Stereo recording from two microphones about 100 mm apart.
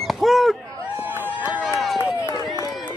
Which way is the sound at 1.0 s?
20° right (ahead or behind).